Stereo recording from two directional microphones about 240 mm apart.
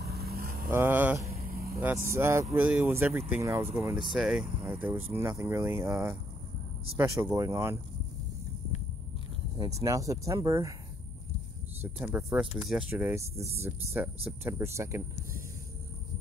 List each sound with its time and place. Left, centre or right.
0.0 s vehicle: right
0.7 s speech: centre
1.3 s vehicle: right
2.0 s speech: centre
9.6 s speech: centre
11.8 s speech: centre